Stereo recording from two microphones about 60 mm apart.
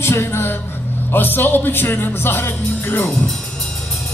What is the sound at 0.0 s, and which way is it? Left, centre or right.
Music, left.